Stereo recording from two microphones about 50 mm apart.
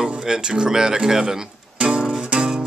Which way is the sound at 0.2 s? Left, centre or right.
Centre.